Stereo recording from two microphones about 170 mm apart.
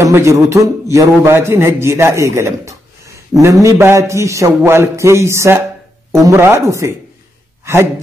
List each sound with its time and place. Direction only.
0.0 s a man's voice: 15° right (ahead or behind)